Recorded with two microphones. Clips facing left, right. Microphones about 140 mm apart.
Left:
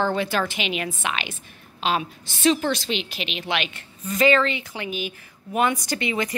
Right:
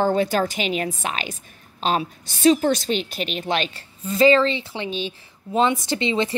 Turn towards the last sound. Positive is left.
turn(degrees=-25)  # may be behind; listen again after turning